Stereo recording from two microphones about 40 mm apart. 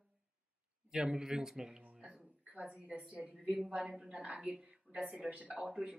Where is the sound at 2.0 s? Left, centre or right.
Right.